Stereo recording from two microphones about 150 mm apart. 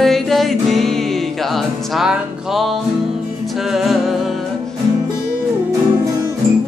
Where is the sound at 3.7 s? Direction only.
Centre (ahead or behind).